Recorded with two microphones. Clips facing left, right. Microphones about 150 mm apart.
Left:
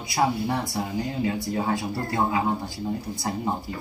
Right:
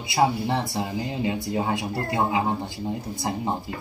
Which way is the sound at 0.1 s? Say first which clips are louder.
Right 2 dB; 25° right (ahead or behind).